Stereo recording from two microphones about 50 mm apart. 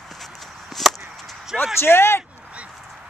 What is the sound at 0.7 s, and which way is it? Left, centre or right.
Chop, centre.